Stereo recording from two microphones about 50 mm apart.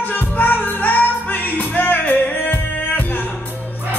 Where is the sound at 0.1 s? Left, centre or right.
Left.